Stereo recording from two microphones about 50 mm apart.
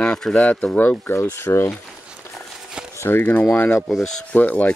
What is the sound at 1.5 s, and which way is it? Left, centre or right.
Speech, left.